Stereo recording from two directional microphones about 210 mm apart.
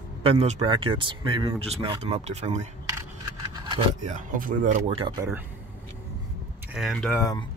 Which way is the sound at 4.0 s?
40° right (ahead or behind).